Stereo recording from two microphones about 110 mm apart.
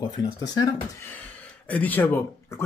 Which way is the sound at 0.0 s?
35° left (ahead or behind).